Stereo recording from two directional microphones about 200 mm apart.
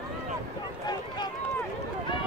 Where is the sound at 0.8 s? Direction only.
20° left (ahead or behind).